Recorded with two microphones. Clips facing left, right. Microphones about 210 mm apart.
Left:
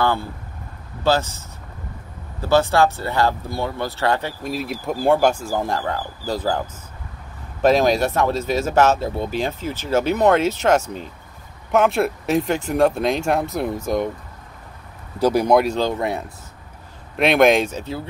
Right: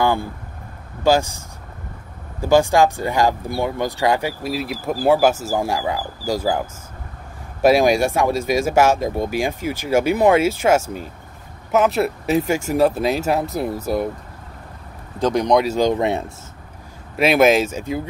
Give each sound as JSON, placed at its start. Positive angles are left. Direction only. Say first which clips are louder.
{"t": 0.0, "sound": "speech", "louder": "right 2 dB", "side_deg": -15}
{"t": 2.4, "sound": "speech", "louder": "right 2 dB", "side_deg": -15}
{"t": 7.6, "sound": "speech", "louder": "right 2 dB", "side_deg": -10}
{"t": 15.1, "sound": "speech", "louder": "left 1 dB", "side_deg": 10}
{"t": 15.7, "sound": "speech", "louder": "right 4 dB", "side_deg": -15}
{"t": 17.2, "sound": "speech", "louder": "right 1 dB", "side_deg": -5}